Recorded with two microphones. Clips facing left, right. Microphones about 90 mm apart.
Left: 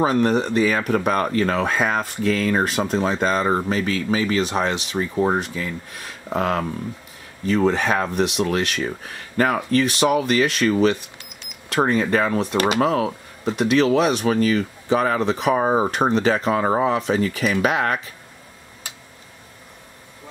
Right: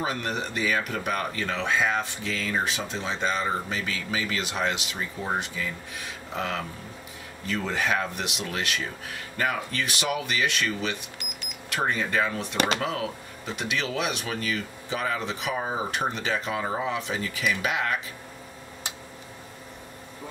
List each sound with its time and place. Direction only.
0.0 s speech: 40° left (ahead or behind)